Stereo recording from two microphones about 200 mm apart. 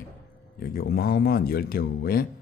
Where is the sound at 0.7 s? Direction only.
50° left (ahead or behind).